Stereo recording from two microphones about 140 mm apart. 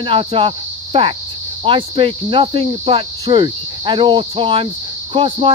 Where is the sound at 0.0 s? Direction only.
40° right (ahead or behind).